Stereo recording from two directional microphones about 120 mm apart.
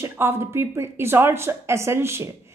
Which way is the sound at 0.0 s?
20° right (ahead or behind).